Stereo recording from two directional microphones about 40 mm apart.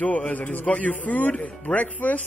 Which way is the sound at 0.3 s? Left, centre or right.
Left.